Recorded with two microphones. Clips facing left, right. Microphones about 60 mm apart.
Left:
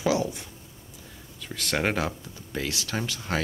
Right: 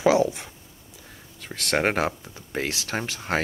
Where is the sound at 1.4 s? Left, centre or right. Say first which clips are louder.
Right 3 dB; right.